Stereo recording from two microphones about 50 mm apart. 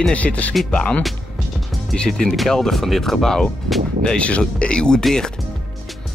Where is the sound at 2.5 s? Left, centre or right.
Centre.